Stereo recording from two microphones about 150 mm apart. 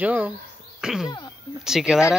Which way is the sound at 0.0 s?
10° right (ahead or behind).